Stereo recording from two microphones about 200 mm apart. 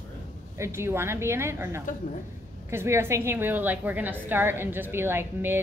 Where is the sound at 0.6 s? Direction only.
15° right (ahead or behind).